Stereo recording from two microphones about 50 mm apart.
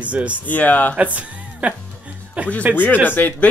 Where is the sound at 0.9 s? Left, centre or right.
Right.